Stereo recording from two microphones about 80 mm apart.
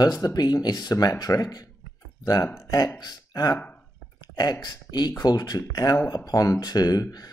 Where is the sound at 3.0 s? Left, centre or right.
Left.